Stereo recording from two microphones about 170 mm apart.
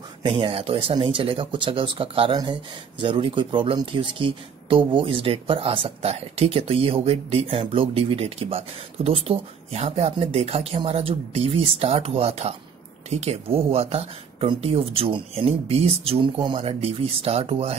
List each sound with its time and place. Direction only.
0.2 s speech: 30° right (ahead or behind)